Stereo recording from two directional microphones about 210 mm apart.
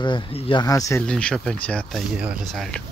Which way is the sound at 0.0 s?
20° left (ahead or behind).